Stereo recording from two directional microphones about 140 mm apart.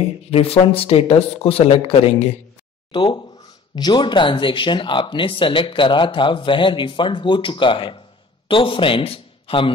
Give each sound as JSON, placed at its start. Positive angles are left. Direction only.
{"t": 0.3, "sound": "speech", "side_deg": 45}